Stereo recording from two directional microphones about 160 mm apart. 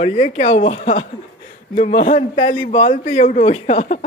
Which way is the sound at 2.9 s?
55° left (ahead or behind).